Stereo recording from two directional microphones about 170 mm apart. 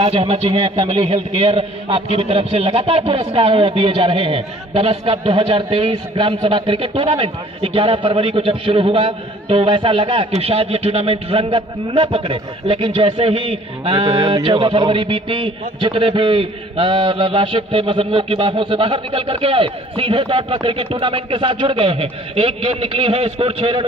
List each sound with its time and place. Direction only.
0.0 s a man's voice: 35° right (ahead or behind)